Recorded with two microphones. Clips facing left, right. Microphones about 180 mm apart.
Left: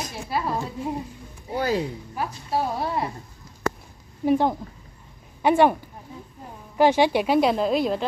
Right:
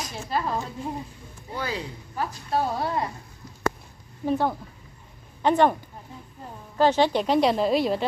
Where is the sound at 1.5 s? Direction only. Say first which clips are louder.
Left 7 dB; 40° left (ahead or behind).